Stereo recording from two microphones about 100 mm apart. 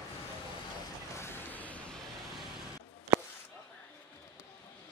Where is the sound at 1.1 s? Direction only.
25° left (ahead or behind).